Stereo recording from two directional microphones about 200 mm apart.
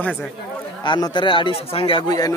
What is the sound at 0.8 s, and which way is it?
Speech, 25° left (ahead or behind).